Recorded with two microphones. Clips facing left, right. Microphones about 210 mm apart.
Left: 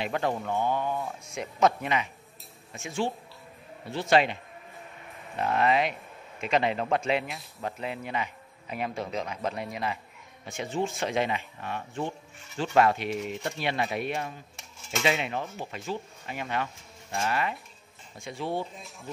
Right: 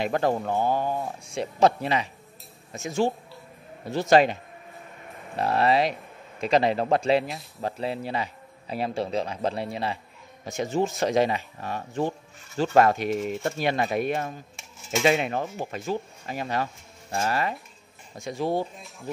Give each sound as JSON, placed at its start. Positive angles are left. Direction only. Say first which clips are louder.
{"t": 0.0, "sound": "a man's voice", "louder": "right 5 dB", "side_deg": -40}
{"t": 10.4, "sound": "a man's voice", "louder": "right 5 dB", "side_deg": -40}